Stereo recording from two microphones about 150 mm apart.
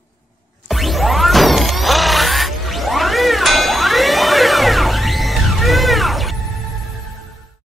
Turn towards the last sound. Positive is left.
turn(degrees=0)  # may be behind; listen again after turning